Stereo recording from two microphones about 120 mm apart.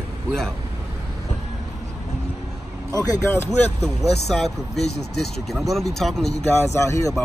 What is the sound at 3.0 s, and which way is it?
Speech, 30° left (ahead or behind).